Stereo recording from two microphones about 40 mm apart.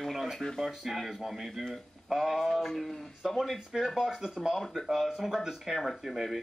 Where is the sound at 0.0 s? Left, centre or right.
Centre.